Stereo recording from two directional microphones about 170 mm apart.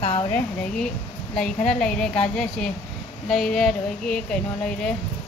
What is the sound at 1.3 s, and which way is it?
A woman's voice, 5° left (ahead or behind).